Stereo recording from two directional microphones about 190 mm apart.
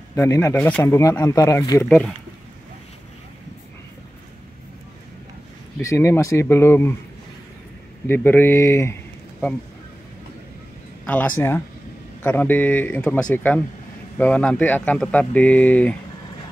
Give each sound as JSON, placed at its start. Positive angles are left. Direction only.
{"t": 0.1, "sound": "speech", "side_deg": 15}
{"t": 1.9, "sound": "speech", "side_deg": 0}
{"t": 5.8, "sound": "speech", "side_deg": 15}
{"t": 8.1, "sound": "speech", "side_deg": 10}
{"t": 11.1, "sound": "speech", "side_deg": 10}